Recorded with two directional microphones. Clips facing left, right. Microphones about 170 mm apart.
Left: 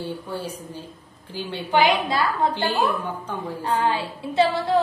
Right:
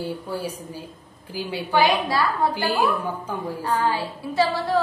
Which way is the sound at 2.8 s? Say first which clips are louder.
Right 1 dB; centre (ahead or behind).